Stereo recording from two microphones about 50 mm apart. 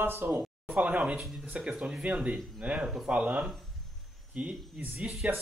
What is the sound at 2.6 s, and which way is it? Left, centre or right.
Speech, right.